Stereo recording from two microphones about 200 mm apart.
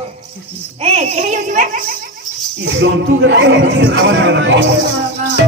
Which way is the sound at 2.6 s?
60° right (ahead or behind).